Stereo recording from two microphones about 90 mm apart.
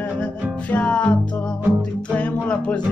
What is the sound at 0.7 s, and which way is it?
Music, 15° left (ahead or behind).